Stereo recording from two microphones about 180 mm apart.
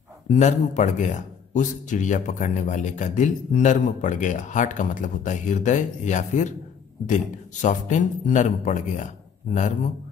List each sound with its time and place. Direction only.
0.3 s speech: 40° left (ahead or behind)